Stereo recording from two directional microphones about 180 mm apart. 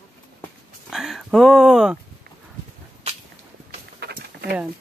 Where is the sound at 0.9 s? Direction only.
Centre (ahead or behind).